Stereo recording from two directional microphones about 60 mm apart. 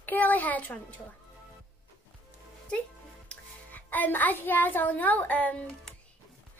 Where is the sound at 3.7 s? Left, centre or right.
Left.